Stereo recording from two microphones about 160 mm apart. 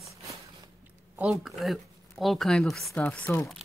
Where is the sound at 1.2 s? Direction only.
5° right (ahead or behind).